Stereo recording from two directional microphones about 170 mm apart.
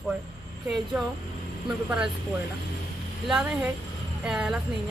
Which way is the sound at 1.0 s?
5° right (ahead or behind).